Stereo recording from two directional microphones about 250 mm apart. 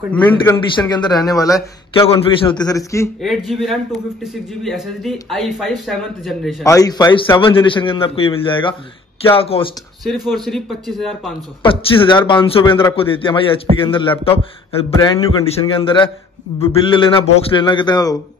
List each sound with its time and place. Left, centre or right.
0.1 s a man's voice: centre
3.2 s speech: centre
6.6 s a man's voice: centre
10.0 s speech: centre
11.6 s a man's voice: left